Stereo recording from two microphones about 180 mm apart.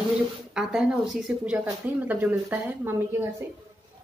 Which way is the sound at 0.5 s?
5° right (ahead or behind).